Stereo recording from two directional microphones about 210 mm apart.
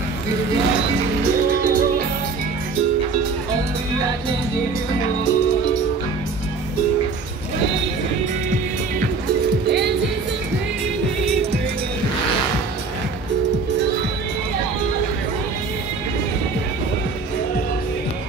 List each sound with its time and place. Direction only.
1.6 s music: 40° right (ahead or behind)
9.7 s music: 50° right (ahead or behind)